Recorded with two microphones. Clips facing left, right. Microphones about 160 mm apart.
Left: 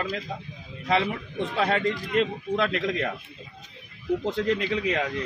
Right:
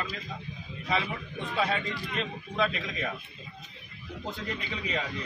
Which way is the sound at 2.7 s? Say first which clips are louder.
Left 8 dB; 65° left (ahead or behind).